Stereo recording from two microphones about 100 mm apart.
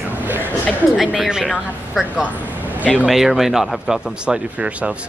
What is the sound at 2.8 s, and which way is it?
Speech, 15° left (ahead or behind).